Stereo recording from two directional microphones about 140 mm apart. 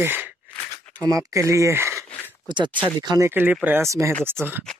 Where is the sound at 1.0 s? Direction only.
25° right (ahead or behind).